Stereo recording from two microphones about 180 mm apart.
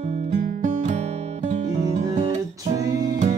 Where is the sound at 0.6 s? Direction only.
45° right (ahead or behind).